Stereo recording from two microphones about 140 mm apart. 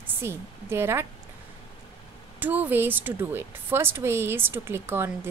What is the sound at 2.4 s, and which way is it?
A woman's voice, 10° right (ahead or behind).